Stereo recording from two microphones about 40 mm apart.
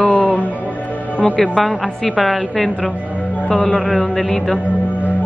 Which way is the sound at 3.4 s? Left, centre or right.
Left.